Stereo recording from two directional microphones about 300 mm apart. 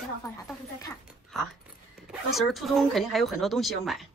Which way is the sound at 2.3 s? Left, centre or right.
Centre.